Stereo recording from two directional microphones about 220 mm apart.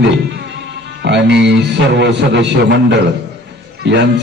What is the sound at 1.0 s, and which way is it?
Speech, 50° right (ahead or behind).